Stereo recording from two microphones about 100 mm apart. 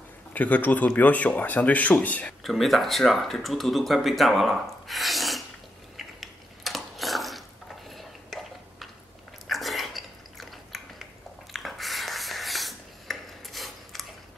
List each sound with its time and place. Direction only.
0.3 s speech: 15° left (ahead or behind)
2.4 s speech: centre (ahead or behind)
5.9 s a sound: centre (ahead or behind)